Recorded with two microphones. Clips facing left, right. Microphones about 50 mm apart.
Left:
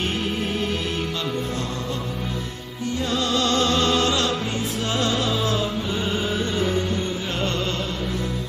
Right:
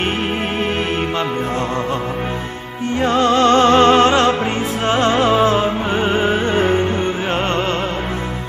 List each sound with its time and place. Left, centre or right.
3.0 s music: right